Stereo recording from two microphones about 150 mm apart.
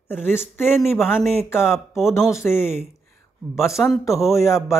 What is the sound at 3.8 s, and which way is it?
Speech, centre (ahead or behind).